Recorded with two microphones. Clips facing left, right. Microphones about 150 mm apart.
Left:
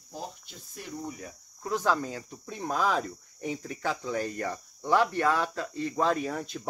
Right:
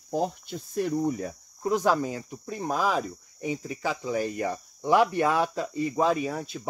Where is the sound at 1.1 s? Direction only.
45° right (ahead or behind).